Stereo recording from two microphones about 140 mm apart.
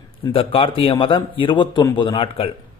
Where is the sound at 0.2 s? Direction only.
40° left (ahead or behind).